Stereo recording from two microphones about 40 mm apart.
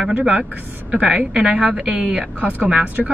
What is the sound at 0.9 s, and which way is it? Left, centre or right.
A woman's voice, right.